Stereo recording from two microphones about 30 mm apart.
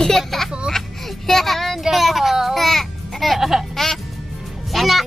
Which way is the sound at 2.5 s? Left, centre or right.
Centre.